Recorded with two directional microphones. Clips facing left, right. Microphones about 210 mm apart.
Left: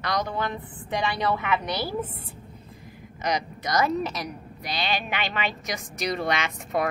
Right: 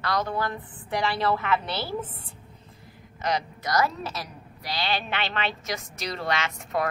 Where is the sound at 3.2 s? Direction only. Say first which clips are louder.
Even; 15° left (ahead or behind).